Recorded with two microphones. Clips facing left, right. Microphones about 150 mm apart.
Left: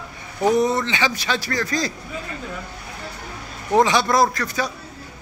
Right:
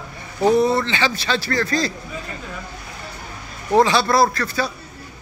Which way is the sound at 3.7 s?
15° left (ahead or behind).